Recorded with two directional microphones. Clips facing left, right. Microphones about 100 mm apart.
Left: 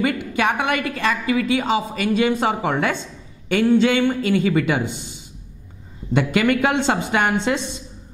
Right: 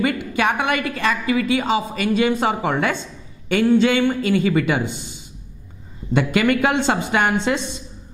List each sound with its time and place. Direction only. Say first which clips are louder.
0.0 s a woman's voice: even; 10° right (ahead or behind)
6.1 s a woman's voice: even; 10° right (ahead or behind)